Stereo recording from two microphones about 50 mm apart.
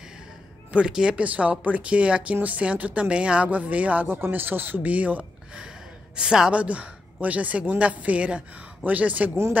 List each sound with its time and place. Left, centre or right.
0.8 s speech: centre
1.2 s speech: right
4.1 s speech: right
6.1 s speech: centre
6.5 s speech: right